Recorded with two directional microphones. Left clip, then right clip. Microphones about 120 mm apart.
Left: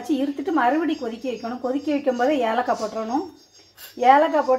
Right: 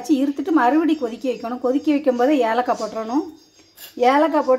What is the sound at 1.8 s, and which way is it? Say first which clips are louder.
A woman's voice: right 2 dB; 30° right (ahead or behind).